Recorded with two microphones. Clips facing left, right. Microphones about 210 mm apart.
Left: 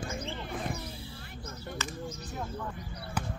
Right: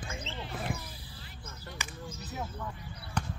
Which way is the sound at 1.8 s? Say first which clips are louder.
Left 5 dB; 10° right (ahead or behind).